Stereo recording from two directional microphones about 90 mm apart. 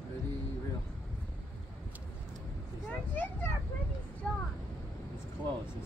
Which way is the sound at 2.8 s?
20° left (ahead or behind).